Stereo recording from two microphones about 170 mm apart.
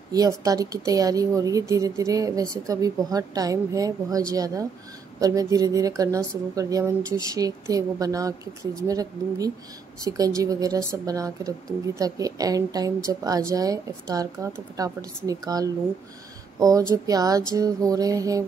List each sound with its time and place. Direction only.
0.4 s a woman's voice: 20° right (ahead or behind)